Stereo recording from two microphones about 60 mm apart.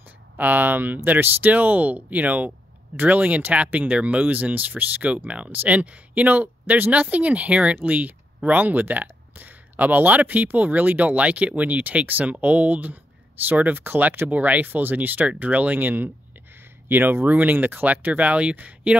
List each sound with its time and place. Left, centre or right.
0.4 s speech: right